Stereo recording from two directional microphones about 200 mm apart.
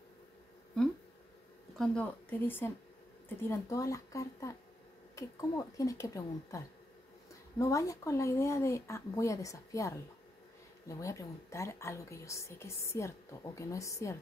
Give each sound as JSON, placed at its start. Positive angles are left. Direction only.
{"t": 1.8, "sound": "a woman's voice", "side_deg": 10}